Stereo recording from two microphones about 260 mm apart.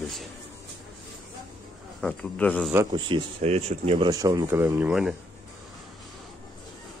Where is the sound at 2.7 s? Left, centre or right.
Centre.